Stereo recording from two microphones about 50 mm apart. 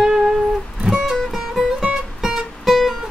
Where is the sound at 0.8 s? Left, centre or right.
Centre.